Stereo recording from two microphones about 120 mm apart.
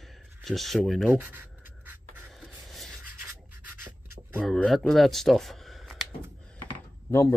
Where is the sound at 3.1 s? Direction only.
15° right (ahead or behind).